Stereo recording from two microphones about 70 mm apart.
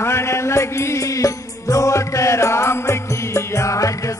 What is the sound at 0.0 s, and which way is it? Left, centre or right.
Music, left.